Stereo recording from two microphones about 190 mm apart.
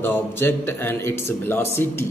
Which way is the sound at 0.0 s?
10° left (ahead or behind).